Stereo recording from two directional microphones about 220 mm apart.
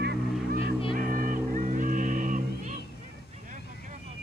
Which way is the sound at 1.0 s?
40° right (ahead or behind).